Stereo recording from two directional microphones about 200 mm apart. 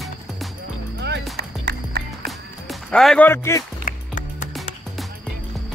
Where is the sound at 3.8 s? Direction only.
40° left (ahead or behind).